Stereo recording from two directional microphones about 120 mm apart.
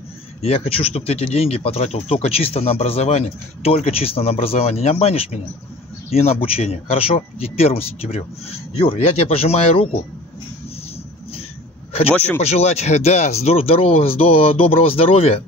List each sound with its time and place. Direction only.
0.4 s speech: 55° left (ahead or behind)
12.1 s speech: 15° left (ahead or behind)
12.4 s speech: 60° left (ahead or behind)